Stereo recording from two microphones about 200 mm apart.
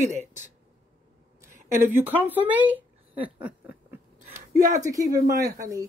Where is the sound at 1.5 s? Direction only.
40° right (ahead or behind).